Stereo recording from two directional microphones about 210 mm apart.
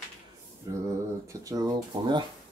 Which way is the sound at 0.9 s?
15° right (ahead or behind).